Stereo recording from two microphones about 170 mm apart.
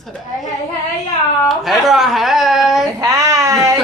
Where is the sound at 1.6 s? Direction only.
Centre (ahead or behind).